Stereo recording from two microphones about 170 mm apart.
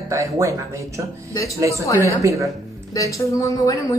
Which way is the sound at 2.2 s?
20° right (ahead or behind).